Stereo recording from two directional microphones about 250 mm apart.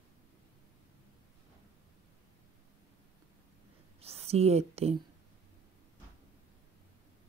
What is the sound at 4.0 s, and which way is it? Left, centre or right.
Speech, right.